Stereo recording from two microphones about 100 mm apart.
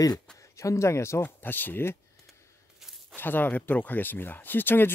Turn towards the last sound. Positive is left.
turn(degrees=20)  # may be behind; listen again after turning